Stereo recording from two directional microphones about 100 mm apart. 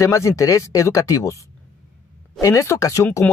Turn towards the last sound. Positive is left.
turn(degrees=30)  # may be behind; listen again after turning